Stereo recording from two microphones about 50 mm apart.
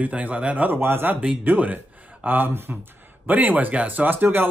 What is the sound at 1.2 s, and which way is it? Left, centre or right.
Speech, right.